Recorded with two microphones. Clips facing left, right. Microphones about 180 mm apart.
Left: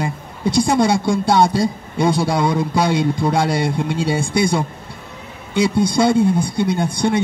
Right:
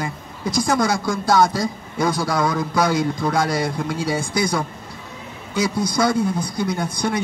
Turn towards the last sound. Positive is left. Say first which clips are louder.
# left 5 dB
turn(degrees=25)  # may be behind; listen again after turning